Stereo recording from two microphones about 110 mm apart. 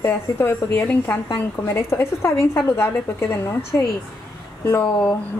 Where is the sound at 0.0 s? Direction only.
20° left (ahead or behind).